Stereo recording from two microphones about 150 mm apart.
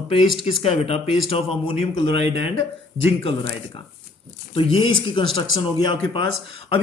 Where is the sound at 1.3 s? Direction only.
35° left (ahead or behind).